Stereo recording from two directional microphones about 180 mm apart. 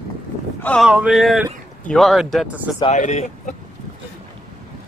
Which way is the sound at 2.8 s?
40° left (ahead or behind).